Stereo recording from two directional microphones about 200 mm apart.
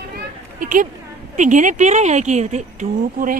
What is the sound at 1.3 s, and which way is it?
A woman's voice, 40° right (ahead or behind).